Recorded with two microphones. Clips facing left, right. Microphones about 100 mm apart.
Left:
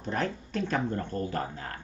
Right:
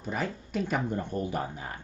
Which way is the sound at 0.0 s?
5° right (ahead or behind).